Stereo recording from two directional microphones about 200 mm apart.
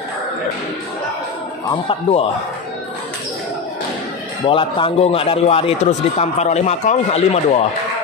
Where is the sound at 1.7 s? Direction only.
30° left (ahead or behind).